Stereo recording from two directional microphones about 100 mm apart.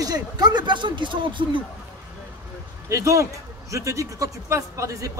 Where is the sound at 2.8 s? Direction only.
35° right (ahead or behind).